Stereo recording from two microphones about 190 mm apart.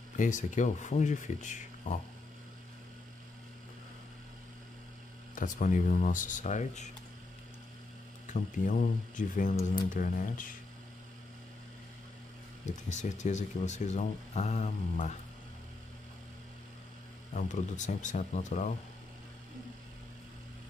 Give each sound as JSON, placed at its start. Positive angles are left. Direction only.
{"t": 0.2, "sound": "speech", "side_deg": 40}
{"t": 5.3, "sound": "speech", "side_deg": 45}
{"t": 8.3, "sound": "speech", "side_deg": 45}
{"t": 12.6, "sound": "speech", "side_deg": 40}
{"t": 17.3, "sound": "speech", "side_deg": 40}